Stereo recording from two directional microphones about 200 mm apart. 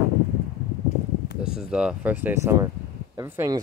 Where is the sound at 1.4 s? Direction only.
5° right (ahead or behind).